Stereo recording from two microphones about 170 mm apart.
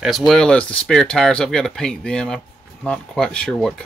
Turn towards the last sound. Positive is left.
turn(degrees=5)  # may be behind; listen again after turning